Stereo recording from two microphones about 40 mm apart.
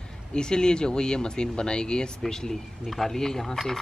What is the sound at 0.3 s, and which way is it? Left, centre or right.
Speech, left.